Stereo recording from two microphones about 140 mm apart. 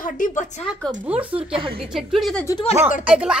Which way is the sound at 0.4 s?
55° left (ahead or behind).